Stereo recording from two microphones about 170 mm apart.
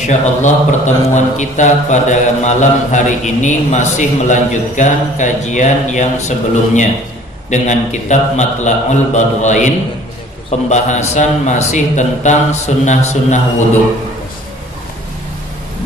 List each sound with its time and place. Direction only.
0.0 s speech: 45° left (ahead or behind)
10.7 s speech: 45° left (ahead or behind)